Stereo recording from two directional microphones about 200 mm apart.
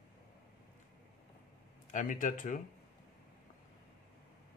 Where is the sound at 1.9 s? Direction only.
40° left (ahead or behind).